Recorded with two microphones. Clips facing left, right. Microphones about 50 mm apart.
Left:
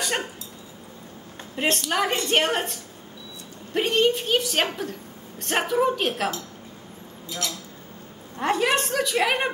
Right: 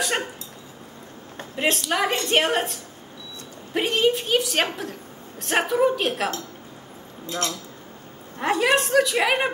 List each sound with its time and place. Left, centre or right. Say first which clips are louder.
1.6 s a woman's voice: right 1 dB; centre
7.2 s speech: right 4 dB; right
8.4 s a woman's voice: right 2 dB; centre